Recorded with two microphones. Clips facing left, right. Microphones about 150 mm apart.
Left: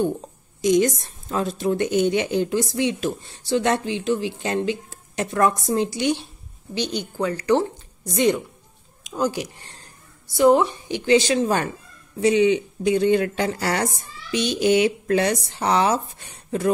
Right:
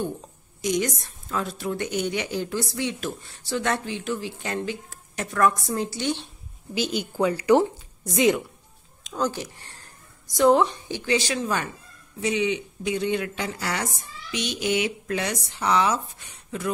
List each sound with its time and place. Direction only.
0.6 s a woman's voice: 25° left (ahead or behind)
6.7 s a woman's voice: 5° right (ahead or behind)
8.0 s a woman's voice: centre (ahead or behind); by 9.8 s 15° left (ahead or behind)
10.2 s a woman's voice: 5° left (ahead or behind)
10.9 s a woman's voice: 25° left (ahead or behind)